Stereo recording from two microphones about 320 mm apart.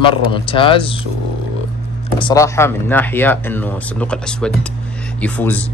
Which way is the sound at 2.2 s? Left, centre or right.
Centre.